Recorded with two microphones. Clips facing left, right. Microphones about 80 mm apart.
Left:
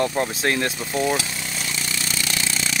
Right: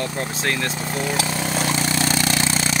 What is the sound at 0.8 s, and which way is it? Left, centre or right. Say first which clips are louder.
Speech: even; right.